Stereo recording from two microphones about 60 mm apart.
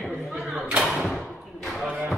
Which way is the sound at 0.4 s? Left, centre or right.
Right.